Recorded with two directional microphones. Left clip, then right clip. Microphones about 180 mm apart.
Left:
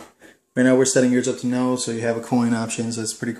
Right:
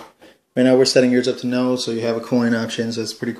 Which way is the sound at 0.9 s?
10° right (ahead or behind).